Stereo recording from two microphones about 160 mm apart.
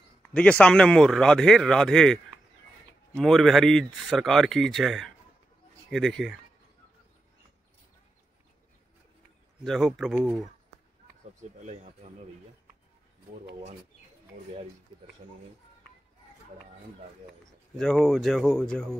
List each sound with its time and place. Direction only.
0.3 s speech: 10° left (ahead or behind)
3.2 s speech: centre (ahead or behind)
9.7 s speech: centre (ahead or behind)
11.6 s speech: 45° right (ahead or behind)
17.7 s speech: 5° left (ahead or behind)